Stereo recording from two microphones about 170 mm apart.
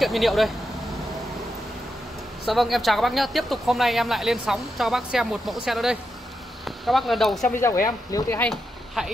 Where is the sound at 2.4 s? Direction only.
Centre (ahead or behind).